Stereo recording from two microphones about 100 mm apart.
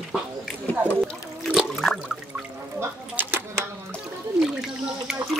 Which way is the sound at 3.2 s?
20° right (ahead or behind).